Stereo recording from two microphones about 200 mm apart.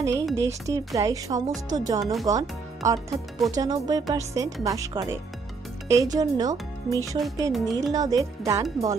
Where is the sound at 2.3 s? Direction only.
15° right (ahead or behind).